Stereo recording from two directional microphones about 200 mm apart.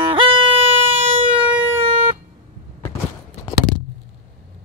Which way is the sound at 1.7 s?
30° right (ahead or behind).